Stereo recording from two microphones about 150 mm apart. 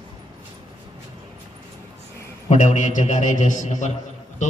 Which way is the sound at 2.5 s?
55° left (ahead or behind).